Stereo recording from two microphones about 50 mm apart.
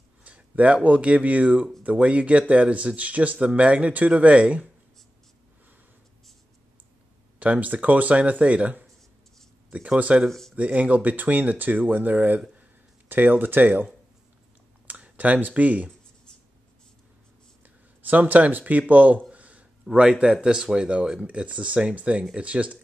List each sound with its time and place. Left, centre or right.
0.2 s a sound: right
0.8 s speech: right
7.3 s speech: right
10.2 s speech: centre
10.5 s speech: right
14.9 s speech: right
18.0 s speech: right
19.3 s a sound: right
19.9 s speech: right